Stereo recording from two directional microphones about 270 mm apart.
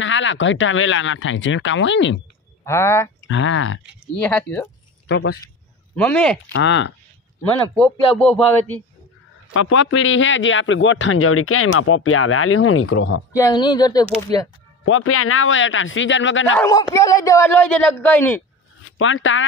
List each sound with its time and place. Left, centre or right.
0.0 s speech: left
2.6 s speech: centre
3.3 s speech: left
3.8 s speech: centre
5.0 s speech: left
5.9 s speech: centre
6.5 s speech: left
8.2 s speech: centre
9.5 s speech: left
13.4 s speech: centre
14.9 s speech: left
16.5 s speech: centre
18.9 s speech: left